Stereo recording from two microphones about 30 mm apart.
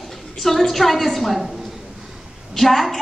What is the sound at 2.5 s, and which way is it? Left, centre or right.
Speech, centre.